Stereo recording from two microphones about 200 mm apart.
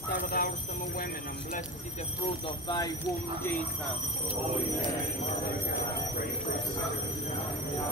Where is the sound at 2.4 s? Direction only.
20° left (ahead or behind).